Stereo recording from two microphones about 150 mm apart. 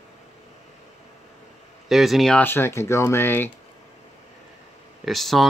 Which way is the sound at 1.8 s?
Centre (ahead or behind).